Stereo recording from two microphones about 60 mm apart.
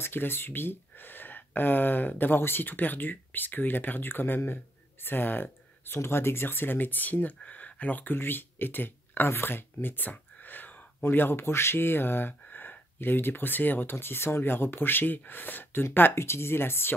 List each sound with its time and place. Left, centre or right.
0.0 s speech: left